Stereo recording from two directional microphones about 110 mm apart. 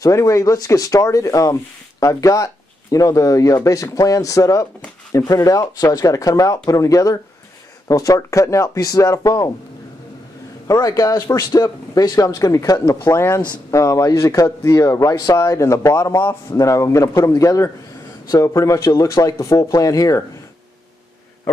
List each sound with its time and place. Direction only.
0.0 s speech: 30° left (ahead or behind)
10.7 s speech: 35° left (ahead or behind)